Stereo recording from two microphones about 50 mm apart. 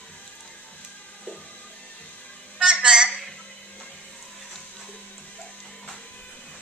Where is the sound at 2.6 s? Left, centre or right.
Centre.